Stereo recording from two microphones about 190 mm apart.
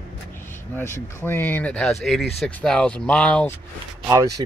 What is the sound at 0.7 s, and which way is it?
Speech, 10° left (ahead or behind).